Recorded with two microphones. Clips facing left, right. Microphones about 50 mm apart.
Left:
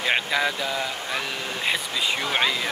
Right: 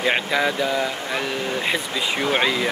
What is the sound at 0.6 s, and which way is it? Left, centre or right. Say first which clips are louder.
Speech: right 5 dB; right.